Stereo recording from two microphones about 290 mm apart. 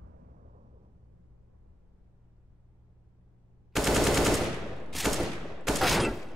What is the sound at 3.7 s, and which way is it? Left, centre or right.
Machine gun, centre.